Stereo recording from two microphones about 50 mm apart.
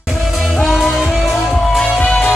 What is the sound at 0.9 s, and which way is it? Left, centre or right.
Music, centre.